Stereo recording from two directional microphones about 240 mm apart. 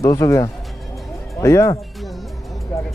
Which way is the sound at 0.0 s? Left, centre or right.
Centre.